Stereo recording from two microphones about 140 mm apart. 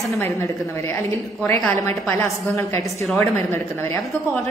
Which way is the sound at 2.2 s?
20° left (ahead or behind).